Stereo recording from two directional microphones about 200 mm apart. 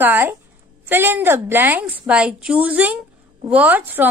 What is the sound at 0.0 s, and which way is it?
A woman's voice, 10° right (ahead or behind).